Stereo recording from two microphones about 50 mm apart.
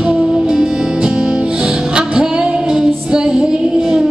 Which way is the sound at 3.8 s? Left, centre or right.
Centre.